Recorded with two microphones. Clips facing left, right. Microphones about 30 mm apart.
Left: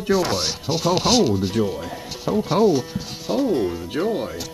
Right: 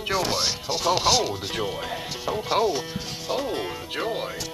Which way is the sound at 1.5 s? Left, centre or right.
Right.